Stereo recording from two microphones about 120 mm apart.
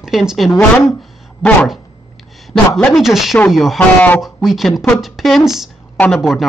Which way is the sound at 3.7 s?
15° left (ahead or behind).